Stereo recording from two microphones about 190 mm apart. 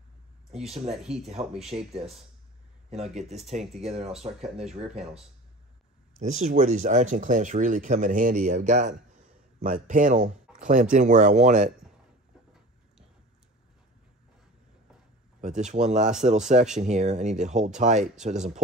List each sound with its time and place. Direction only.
0.5 s speech: 35° right (ahead or behind)
1.4 s speech: 25° right (ahead or behind)
2.9 s speech: 35° right (ahead or behind)
4.4 s speech: centre (ahead or behind)
6.1 s speech: 40° right (ahead or behind)
15.4 s speech: 40° right (ahead or behind)